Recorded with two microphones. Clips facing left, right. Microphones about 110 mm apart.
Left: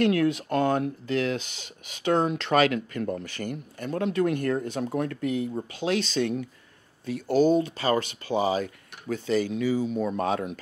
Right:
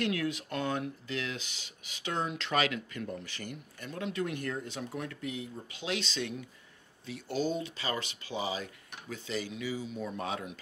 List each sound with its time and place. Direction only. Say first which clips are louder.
0.0 s speech: left 10 dB; 50° left (ahead or behind)